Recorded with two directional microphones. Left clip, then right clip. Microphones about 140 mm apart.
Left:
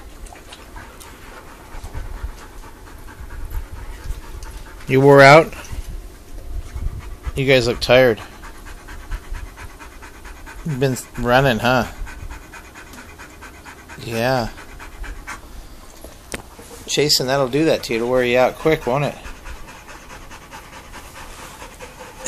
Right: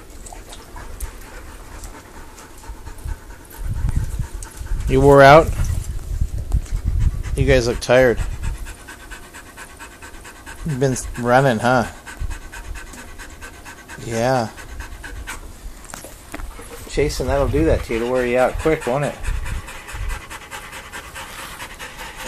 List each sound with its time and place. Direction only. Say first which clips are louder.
4.8 s speech: left 1 dB; 5° left (ahead or behind)
7.3 s speech: left 1 dB; centre (ahead or behind)
10.8 s speech: even; 15° right (ahead or behind)
13.9 s speech: right 1 dB; 20° right (ahead or behind)
16.9 s speech: left 3 dB; 5° left (ahead or behind)